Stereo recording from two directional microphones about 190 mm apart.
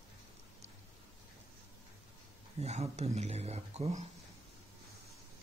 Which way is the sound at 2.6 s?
35° right (ahead or behind).